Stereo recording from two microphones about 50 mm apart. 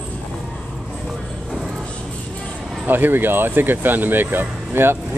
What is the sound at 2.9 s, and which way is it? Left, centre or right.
Speech, right.